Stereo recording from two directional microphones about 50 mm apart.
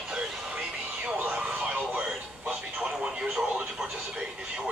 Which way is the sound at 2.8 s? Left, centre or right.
Centre.